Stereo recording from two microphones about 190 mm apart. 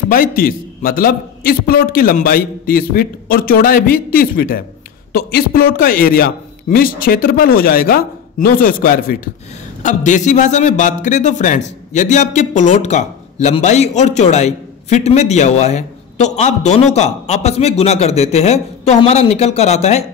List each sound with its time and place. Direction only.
0.1 s a man's voice: 50° left (ahead or behind)